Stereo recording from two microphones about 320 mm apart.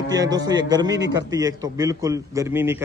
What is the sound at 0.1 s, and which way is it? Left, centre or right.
A man's voice, centre.